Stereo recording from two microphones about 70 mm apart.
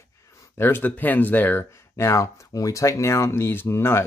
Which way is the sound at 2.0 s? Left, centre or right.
Left.